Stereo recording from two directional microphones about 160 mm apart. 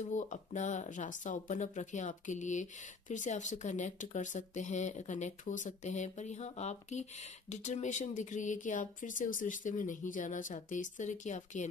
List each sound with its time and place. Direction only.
0.0 s speech: 50° left (ahead or behind)